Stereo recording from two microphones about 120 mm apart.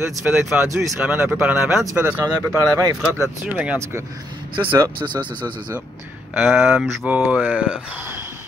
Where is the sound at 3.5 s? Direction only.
10° right (ahead or behind).